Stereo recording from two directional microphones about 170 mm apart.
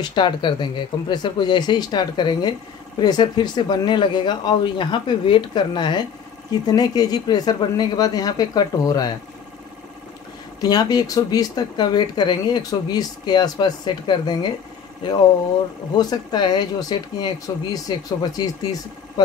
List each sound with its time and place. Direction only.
0.0 s speech: 30° left (ahead or behind)
10.6 s speech: 20° left (ahead or behind)